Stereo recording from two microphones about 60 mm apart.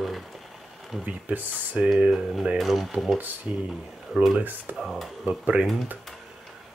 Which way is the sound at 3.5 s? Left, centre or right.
Right.